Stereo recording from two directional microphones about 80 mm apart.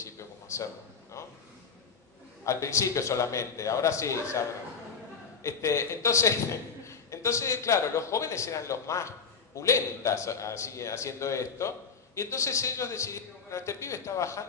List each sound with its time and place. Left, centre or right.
0.0 s a sound: left
2.4 s a man's voice: left
5.4 s a man's voice: left